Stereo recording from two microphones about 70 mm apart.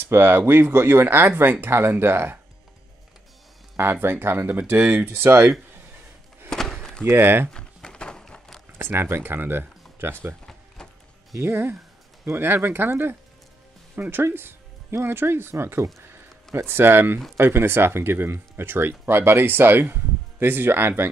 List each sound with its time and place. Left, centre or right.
0.0 s speech: right
3.7 s speech: right
6.5 s a sound: centre
7.1 s speech: right
7.5 s a sound: centre
8.7 s speech: right
10.8 s music: centre
11.3 s speech: right